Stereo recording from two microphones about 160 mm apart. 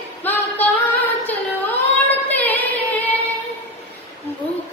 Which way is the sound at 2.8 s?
10° left (ahead or behind).